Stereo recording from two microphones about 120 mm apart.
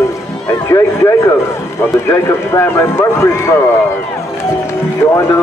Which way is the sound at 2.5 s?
20° left (ahead or behind).